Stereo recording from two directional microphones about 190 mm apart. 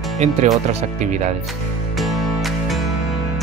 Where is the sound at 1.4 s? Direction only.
Centre (ahead or behind).